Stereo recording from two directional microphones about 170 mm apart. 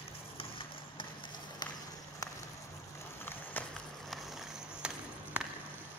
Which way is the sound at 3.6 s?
10° left (ahead or behind).